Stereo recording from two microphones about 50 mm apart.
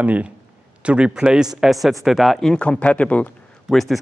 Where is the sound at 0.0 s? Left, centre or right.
Right.